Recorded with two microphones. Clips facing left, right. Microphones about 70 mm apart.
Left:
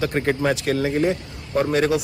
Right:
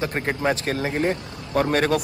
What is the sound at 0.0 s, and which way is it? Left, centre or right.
Speech, right.